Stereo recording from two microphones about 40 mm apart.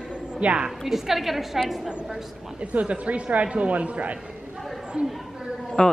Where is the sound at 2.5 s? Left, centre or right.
Right.